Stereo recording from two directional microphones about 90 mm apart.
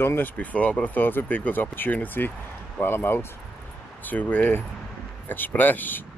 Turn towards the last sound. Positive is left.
turn(degrees=20)  # may be behind; listen again after turning